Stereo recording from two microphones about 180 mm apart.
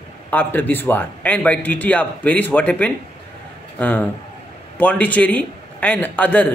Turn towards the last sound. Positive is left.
turn(degrees=10)  # may be behind; listen again after turning